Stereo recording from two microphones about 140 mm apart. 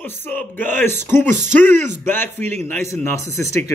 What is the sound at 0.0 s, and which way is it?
Speech, 15° left (ahead or behind).